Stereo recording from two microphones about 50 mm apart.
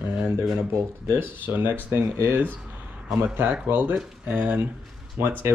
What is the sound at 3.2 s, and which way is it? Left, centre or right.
Speech, right.